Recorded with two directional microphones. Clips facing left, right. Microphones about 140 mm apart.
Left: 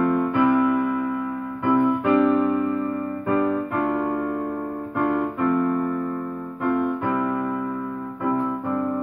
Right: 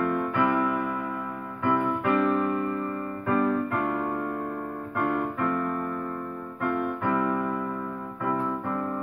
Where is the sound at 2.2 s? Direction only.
Centre (ahead or behind).